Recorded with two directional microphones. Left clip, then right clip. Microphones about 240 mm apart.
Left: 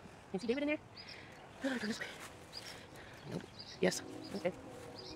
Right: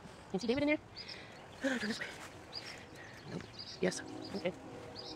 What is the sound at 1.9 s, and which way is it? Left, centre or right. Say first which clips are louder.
Speech: right 2 dB; centre.